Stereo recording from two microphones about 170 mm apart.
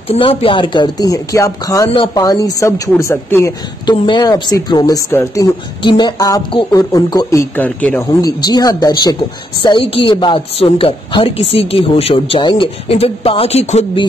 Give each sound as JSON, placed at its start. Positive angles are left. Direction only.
{"t": 0.1, "sound": "a woman's voice", "side_deg": 35}
{"t": 3.8, "sound": "speech", "side_deg": 25}
{"t": 5.8, "sound": "speech", "side_deg": 25}
{"t": 8.4, "sound": "a woman's voice", "side_deg": 25}